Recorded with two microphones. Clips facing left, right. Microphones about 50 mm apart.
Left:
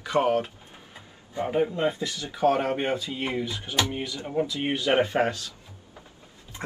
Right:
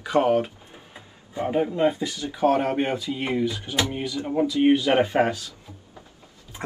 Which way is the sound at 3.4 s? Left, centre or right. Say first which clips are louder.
Right 5 dB; left.